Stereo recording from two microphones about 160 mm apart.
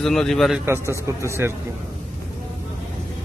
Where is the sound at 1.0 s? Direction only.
15° right (ahead or behind).